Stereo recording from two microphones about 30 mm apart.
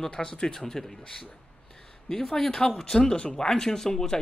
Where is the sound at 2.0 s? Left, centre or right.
Centre.